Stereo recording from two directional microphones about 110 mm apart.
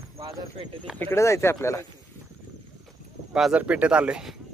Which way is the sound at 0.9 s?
20° left (ahead or behind).